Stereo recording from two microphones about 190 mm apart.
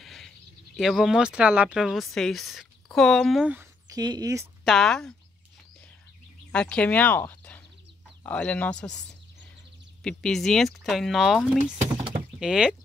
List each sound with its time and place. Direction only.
0.0 s a sound: centre (ahead or behind)
0.7 s speech: centre (ahead or behind)
3.9 s speech: 20° right (ahead or behind)
4.6 s speech: centre (ahead or behind)
6.5 s speech: 5° left (ahead or behind)
10.0 s speech: centre (ahead or behind)
12.0 s door: 5° right (ahead or behind)